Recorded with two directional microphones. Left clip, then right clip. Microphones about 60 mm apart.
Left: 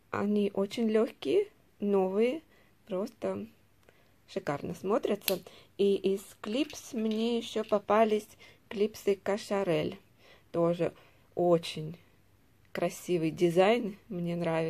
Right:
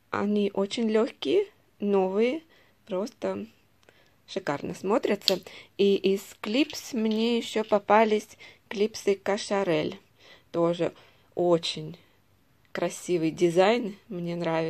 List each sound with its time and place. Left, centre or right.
0.1 s speech: right
4.8 s speech: right
7.6 s a woman's voice: right; by 14.7 s centre